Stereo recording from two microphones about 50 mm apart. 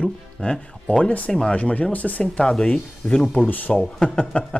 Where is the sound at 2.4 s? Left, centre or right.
Centre.